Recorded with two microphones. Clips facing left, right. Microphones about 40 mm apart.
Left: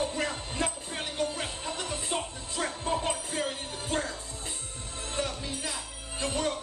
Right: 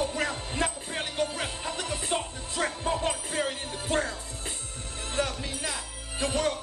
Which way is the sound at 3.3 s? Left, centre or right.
Right.